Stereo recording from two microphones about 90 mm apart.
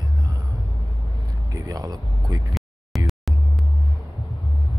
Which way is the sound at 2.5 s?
Centre (ahead or behind).